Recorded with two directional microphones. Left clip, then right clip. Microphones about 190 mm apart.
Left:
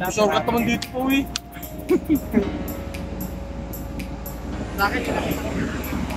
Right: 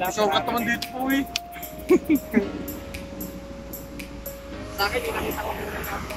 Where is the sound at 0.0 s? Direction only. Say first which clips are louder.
Left 2 dB; 10° left (ahead or behind).